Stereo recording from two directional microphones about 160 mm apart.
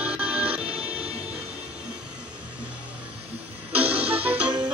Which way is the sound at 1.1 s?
5° right (ahead or behind).